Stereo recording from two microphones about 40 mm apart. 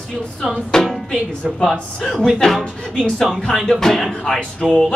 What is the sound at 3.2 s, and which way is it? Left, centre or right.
Speech, centre.